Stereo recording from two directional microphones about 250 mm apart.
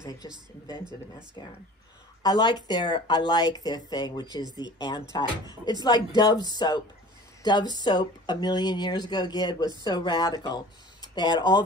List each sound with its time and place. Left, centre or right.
0.2 s speech: centre
2.2 s speech: centre
7.4 s speech: centre